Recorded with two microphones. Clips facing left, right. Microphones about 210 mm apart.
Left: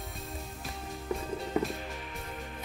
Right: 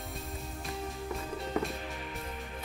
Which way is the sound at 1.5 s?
15° left (ahead or behind).